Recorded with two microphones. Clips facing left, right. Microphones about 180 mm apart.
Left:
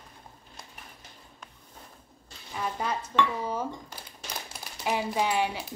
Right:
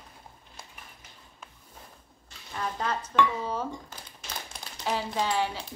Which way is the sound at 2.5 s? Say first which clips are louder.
Even; 10° left (ahead or behind).